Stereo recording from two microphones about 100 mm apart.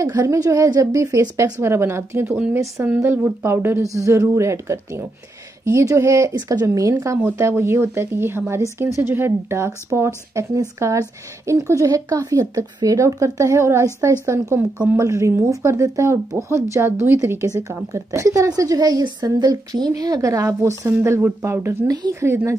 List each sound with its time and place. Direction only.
0.0 s a woman's voice: 35° right (ahead or behind)
21.8 s a woman's voice: 45° right (ahead or behind)
22.2 s speech: 25° right (ahead or behind)